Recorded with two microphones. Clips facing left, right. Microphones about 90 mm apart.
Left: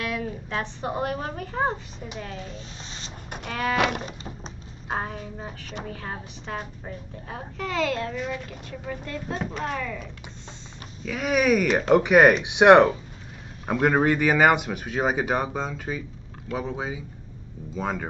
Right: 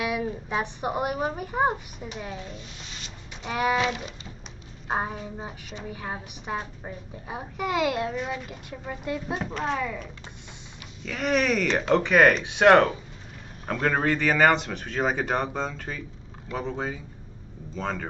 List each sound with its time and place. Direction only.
0.0 s a woman's voice: 15° right (ahead or behind)
3.4 s a woman's voice: 15° right (ahead or behind)
3.7 s a sound: 65° left (ahead or behind)
4.8 s a woman's voice: 15° right (ahead or behind)
9.4 s speech: centre (ahead or behind)
11.1 s a man's voice: 5° left (ahead or behind)